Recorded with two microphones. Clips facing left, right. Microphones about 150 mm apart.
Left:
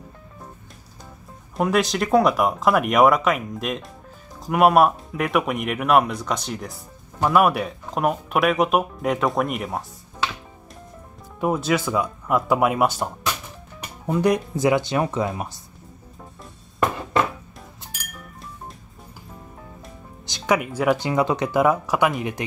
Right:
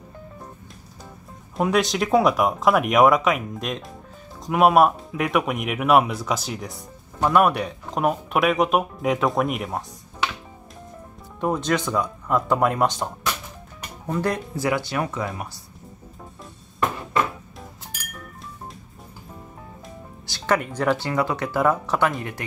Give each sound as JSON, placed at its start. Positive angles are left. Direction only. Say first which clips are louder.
{"t": 1.6, "sound": "speech", "louder": "even", "side_deg": 0}
{"t": 11.3, "sound": "speech", "louder": "left 1 dB", "side_deg": 5}
{"t": 14.5, "sound": "speech", "louder": "left 4 dB", "side_deg": 20}
{"t": 20.2, "sound": "speech", "louder": "left 1 dB", "side_deg": 15}